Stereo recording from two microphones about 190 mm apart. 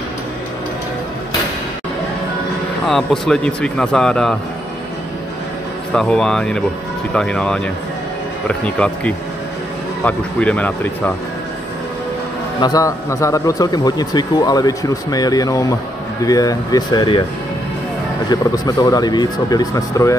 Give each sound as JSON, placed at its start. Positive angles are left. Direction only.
{"t": 2.9, "sound": "speech", "side_deg": 5}
{"t": 5.9, "sound": "speech", "side_deg": 5}
{"t": 12.6, "sound": "a man's voice", "side_deg": 20}
{"t": 18.3, "sound": "a man's voice", "side_deg": 20}